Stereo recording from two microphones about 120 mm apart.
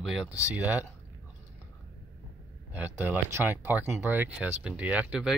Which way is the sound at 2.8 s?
15° right (ahead or behind).